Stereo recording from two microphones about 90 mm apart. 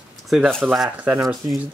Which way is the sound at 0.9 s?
15° right (ahead or behind).